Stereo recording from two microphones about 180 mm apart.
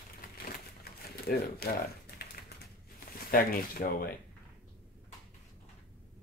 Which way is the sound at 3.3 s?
55° left (ahead or behind).